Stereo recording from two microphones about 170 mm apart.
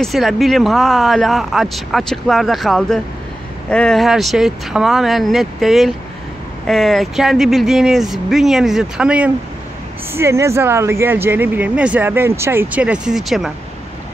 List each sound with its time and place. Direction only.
0.0 s speech: centre (ahead or behind)